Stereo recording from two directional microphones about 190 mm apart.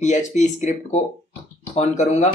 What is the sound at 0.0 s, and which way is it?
Speech, 40° left (ahead or behind).